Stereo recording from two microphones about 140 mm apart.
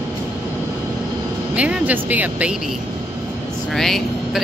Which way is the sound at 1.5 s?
10° right (ahead or behind).